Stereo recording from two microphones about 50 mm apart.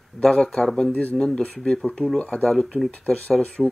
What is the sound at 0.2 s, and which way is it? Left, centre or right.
Speech, centre.